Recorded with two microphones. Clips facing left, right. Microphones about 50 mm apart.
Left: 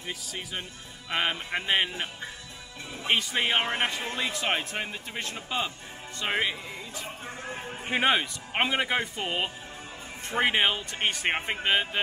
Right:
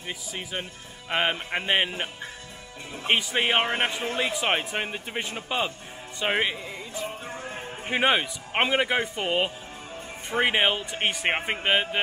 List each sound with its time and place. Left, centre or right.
0.0 s speech: centre
3.1 s speech: centre
7.3 s a man's voice: centre